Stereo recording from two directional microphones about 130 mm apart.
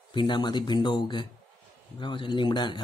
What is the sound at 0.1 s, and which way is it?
Speech, 40° left (ahead or behind).